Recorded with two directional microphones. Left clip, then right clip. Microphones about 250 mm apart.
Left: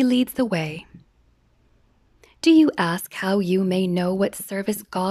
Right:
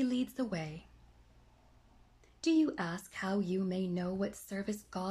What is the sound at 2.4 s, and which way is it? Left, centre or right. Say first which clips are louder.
Speech: left 15 dB; left.